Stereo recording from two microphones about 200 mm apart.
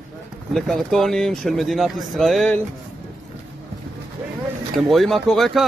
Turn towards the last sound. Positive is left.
turn(degrees=0)  # may be behind; listen again after turning